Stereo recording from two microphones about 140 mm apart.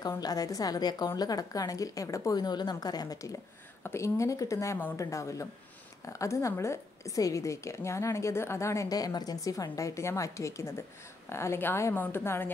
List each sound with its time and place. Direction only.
0.2 s a woman's voice: 25° left (ahead or behind)